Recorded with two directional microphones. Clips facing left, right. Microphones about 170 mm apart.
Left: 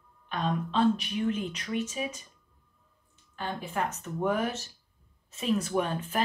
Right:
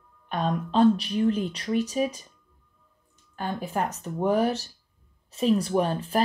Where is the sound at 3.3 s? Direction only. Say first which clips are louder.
Right 4 dB; 40° right (ahead or behind).